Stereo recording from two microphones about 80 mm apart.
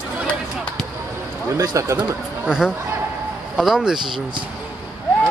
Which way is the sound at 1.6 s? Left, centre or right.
Right.